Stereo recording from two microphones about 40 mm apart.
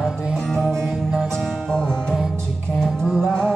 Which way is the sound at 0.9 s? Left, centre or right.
Centre.